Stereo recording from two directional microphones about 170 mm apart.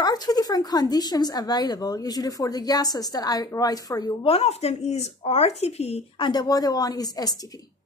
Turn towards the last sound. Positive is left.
turn(degrees=20)  # may be behind; listen again after turning